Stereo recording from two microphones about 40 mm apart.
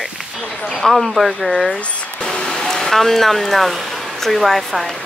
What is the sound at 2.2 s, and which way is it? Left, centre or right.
Speech, centre.